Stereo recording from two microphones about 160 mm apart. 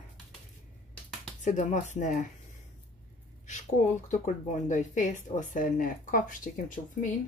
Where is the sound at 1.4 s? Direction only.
50° left (ahead or behind).